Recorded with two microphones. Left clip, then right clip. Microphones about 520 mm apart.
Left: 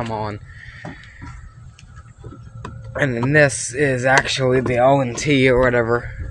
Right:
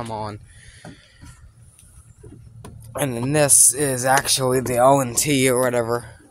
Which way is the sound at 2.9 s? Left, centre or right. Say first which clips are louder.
Left 5 dB; right.